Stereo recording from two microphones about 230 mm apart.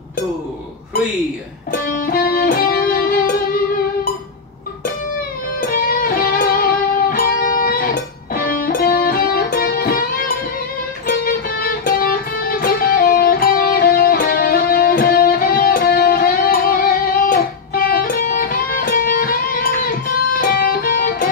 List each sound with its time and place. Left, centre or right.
1.7 s music: left
5.6 s music: left